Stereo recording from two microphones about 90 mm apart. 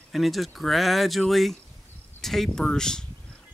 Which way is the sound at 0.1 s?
Centre (ahead or behind).